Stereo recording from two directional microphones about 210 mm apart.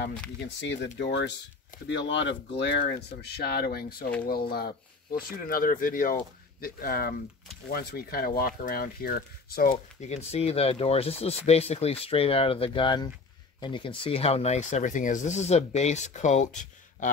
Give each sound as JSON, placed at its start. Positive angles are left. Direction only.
{"t": 0.6, "sound": "speech", "side_deg": 55}